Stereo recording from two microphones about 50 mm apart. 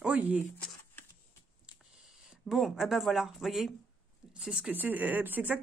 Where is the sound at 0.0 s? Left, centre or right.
Right.